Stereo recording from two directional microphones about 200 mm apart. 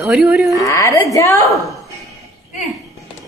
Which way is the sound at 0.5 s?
15° left (ahead or behind).